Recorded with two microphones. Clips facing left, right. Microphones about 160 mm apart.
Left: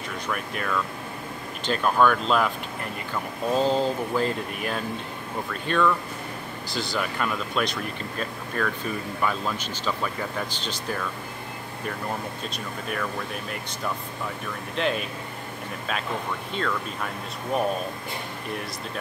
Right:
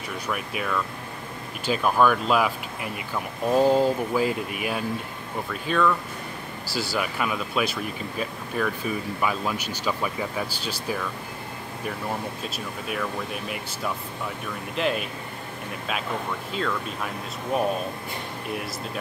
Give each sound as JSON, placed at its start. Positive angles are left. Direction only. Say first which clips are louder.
{"t": 0.3, "sound": "speech", "louder": "right 1 dB", "side_deg": -5}
{"t": 12.8, "sound": "speech", "louder": "right 1 dB", "side_deg": -5}
{"t": 14.8, "sound": "speech", "louder": "even", "side_deg": 0}